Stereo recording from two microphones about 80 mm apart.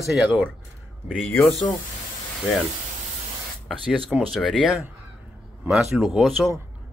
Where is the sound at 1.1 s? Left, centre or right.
Centre.